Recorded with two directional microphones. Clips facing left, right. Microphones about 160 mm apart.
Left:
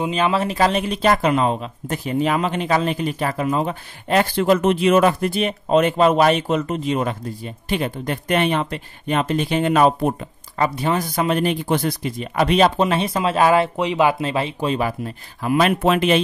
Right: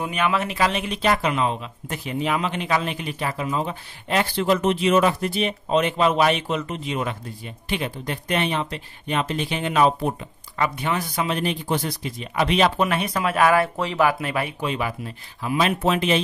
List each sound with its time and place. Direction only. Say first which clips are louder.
0.0 s speech: left 4 dB; 30° left (ahead or behind); by 10.1 s 50° left (ahead or behind)
10.6 s speech: left 4 dB; 35° left (ahead or behind); by 16.2 s 60° left (ahead or behind)